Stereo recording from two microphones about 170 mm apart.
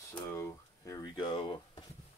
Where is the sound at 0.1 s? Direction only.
15° left (ahead or behind).